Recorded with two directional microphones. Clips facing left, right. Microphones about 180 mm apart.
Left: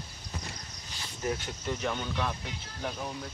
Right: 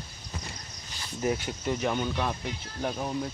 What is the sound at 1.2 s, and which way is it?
Speech, 10° right (ahead or behind).